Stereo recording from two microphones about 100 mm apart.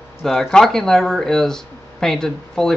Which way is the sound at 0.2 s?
5° left (ahead or behind).